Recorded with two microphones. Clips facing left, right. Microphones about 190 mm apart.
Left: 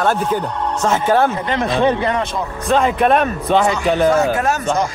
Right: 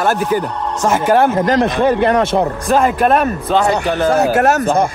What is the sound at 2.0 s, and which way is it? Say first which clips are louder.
Speech: right 7 dB; 65° right (ahead or behind).